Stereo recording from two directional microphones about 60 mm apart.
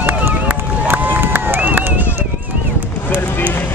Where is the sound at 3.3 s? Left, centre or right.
Left.